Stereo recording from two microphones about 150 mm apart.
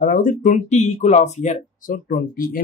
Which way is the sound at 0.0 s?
65° left (ahead or behind).